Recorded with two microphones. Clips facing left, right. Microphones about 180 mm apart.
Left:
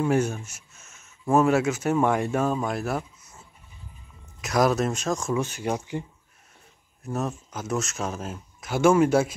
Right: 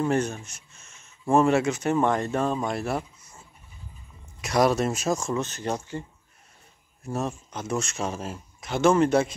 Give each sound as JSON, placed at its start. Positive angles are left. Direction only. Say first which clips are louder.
{"t": 0.0, "sound": "a sound", "louder": "left 1 dB", "side_deg": 10}
{"t": 1.3, "sound": "speech", "louder": "even", "side_deg": 5}
{"t": 5.3, "sound": "speech", "louder": "left 2 dB", "side_deg": 10}
{"t": 7.0, "sound": "speech", "louder": "even", "side_deg": 0}